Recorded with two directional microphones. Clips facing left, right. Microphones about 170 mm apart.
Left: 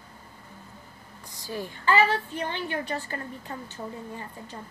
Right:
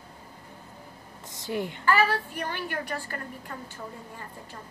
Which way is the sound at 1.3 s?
20° right (ahead or behind).